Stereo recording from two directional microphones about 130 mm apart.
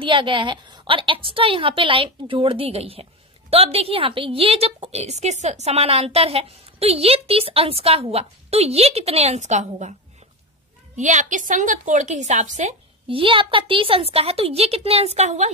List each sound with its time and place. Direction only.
0.0 s a woman's voice: 40° right (ahead or behind); by 9.9 s 65° right (ahead or behind)
11.0 s a woman's voice: 70° right (ahead or behind)
13.1 s a woman's voice: 40° right (ahead or behind); by 15.5 s 60° right (ahead or behind)